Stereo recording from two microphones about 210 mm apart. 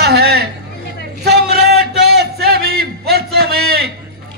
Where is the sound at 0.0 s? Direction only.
50° right (ahead or behind).